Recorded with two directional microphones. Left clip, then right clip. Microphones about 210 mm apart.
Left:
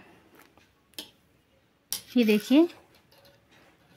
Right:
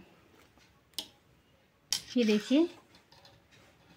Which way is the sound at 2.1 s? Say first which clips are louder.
Left 6 dB; 40° left (ahead or behind).